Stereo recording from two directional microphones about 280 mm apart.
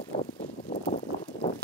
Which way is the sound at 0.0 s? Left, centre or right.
Left.